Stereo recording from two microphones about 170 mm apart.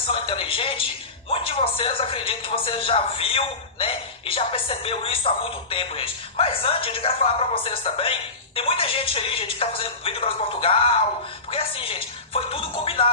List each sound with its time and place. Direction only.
0.0 s a man's voice: 30° left (ahead or behind)